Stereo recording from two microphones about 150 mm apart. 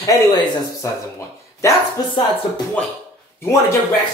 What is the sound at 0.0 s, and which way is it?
Mantra, 25° left (ahead or behind).